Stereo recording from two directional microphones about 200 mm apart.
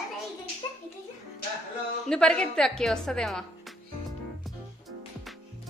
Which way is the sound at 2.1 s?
5° left (ahead or behind).